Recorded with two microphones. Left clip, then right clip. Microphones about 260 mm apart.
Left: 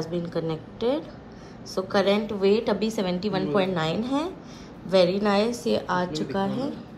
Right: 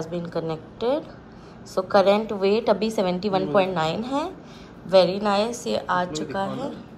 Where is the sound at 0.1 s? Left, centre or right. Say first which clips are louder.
Right 1 dB; centre.